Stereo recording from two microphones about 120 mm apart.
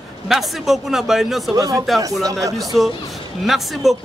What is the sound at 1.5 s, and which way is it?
Speech, 30° right (ahead or behind).